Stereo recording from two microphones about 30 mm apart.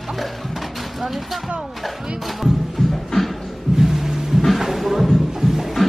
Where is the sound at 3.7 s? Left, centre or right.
Centre.